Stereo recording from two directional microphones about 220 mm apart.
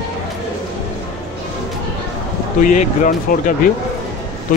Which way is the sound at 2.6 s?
35° left (ahead or behind).